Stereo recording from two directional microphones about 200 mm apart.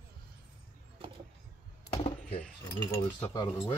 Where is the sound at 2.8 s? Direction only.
20° left (ahead or behind).